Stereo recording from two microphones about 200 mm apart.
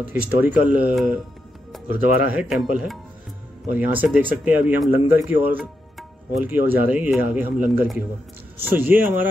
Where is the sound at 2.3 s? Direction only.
Centre (ahead or behind).